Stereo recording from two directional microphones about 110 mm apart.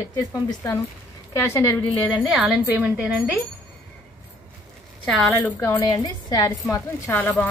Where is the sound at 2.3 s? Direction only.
15° right (ahead or behind).